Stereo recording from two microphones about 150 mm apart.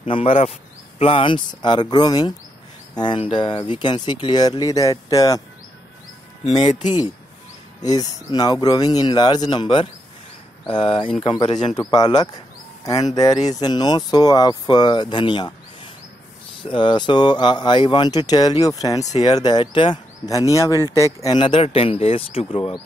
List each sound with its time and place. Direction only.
0.0 s speech: 40° left (ahead or behind)
6.4 s speech: 40° left (ahead or behind)
7.8 s speech: 25° left (ahead or behind)
11.0 s speech: 35° left (ahead or behind)